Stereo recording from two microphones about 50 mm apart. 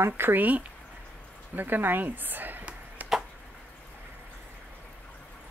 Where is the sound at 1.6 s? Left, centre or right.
Right.